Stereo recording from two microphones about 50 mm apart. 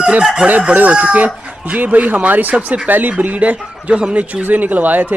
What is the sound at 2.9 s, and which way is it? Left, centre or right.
Speech, right.